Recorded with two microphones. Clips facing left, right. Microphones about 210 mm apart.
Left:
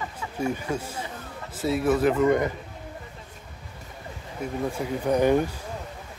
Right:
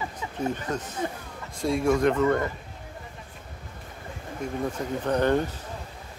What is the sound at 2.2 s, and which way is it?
Speech, 15° left (ahead or behind).